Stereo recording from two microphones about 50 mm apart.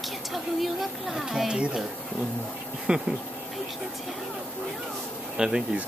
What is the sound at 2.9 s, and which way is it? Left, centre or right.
Speech, centre.